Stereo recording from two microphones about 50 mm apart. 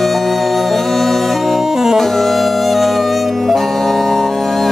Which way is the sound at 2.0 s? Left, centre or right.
Centre.